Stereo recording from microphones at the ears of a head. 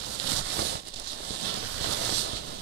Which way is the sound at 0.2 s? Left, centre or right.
Right.